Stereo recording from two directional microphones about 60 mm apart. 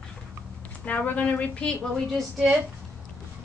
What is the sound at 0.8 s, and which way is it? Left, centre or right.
A woman's voice, left.